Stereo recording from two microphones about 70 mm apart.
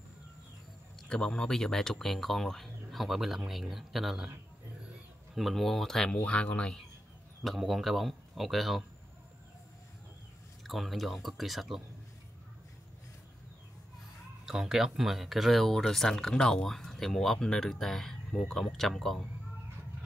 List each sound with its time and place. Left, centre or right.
1.0 s speech: centre
5.3 s speech: centre
6.1 s speech: centre
7.4 s speech: centre
10.6 s speech: centre
14.4 s speech: centre